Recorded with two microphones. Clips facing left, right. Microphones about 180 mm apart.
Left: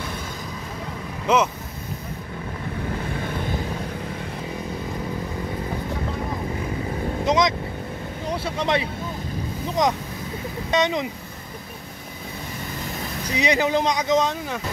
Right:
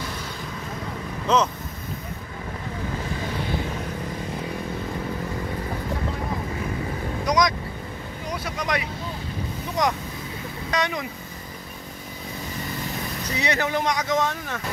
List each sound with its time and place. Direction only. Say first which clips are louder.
1.2 s speech: left 1 dB; 10° left (ahead or behind)
7.2 s vehicle: left 1 dB; 25° left (ahead or behind)
9.8 s speech: left 2 dB; 20° left (ahead or behind)
13.4 s speech: left 4 dB; 15° left (ahead or behind)